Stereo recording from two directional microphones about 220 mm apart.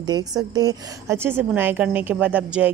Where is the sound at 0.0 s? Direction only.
20° right (ahead or behind).